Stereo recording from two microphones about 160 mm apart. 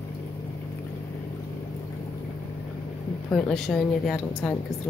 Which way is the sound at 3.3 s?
5° left (ahead or behind).